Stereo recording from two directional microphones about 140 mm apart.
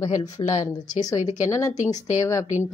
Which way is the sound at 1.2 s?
60° left (ahead or behind).